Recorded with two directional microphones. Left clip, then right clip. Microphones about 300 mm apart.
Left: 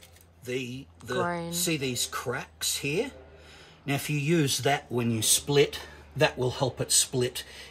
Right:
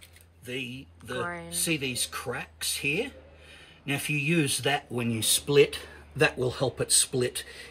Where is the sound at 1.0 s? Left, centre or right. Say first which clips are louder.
Left 4 dB; centre.